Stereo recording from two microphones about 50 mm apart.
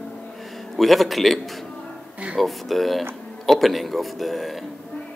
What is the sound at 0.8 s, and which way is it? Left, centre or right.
Speech, centre.